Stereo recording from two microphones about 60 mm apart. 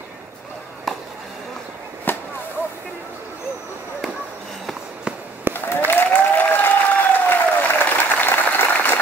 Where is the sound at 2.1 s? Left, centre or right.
Left.